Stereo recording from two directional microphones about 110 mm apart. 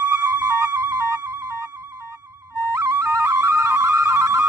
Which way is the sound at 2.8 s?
30° right (ahead or behind).